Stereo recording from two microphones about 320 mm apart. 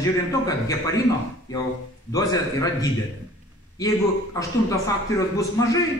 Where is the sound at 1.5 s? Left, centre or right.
Centre.